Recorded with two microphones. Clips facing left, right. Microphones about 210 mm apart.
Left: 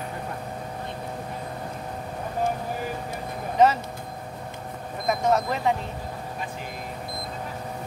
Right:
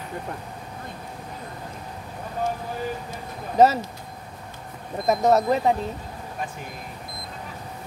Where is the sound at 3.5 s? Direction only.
40° right (ahead or behind).